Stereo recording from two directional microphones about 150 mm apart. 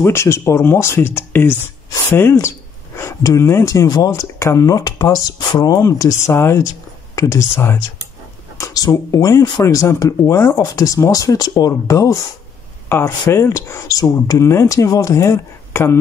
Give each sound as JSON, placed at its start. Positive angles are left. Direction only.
{"t": 0.0, "sound": "speech", "side_deg": 15}
{"t": 3.0, "sound": "speech", "side_deg": 20}
{"t": 12.8, "sound": "a sound", "side_deg": 15}
{"t": 13.2, "sound": "speech", "side_deg": 20}